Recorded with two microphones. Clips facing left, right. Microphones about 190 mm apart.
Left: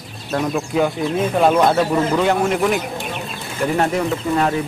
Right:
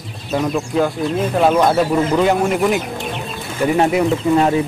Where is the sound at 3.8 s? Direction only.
15° right (ahead or behind).